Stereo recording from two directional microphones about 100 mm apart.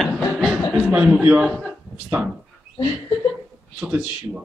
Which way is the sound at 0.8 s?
15° right (ahead or behind).